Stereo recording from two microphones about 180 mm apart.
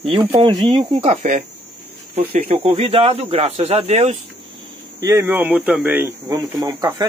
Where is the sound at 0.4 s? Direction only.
25° right (ahead or behind).